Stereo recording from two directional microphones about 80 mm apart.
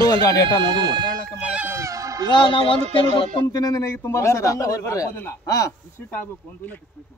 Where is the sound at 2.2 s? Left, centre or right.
Left.